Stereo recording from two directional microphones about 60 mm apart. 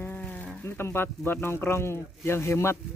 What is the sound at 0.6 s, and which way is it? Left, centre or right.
Speech, left.